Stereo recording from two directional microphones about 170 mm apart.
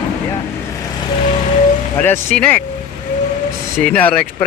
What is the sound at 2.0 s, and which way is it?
Speech, 10° left (ahead or behind).